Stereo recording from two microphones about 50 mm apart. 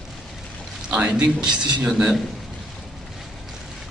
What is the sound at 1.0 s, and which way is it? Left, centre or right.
A man's voice, centre.